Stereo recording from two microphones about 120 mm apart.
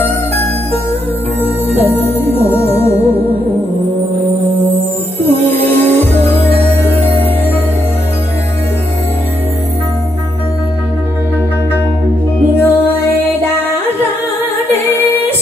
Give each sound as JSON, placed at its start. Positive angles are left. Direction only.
{"t": 1.4, "sound": "music", "side_deg": 15}
{"t": 5.3, "sound": "music", "side_deg": 15}
{"t": 12.5, "sound": "music", "side_deg": 15}